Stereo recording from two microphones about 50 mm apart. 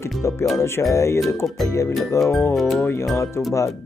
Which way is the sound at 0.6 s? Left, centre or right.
Left.